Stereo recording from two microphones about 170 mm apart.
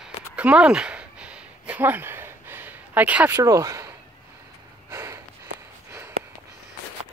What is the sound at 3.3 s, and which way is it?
Speech, 20° right (ahead or behind).